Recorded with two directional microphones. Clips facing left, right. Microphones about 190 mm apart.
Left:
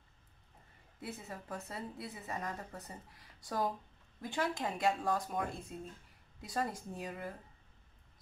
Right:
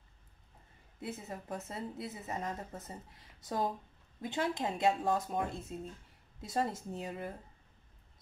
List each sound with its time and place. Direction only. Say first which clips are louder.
1.0 s a woman's voice: right 3 dB; 20° right (ahead or behind)